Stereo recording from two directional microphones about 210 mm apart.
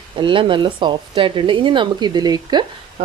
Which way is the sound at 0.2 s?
25° right (ahead or behind).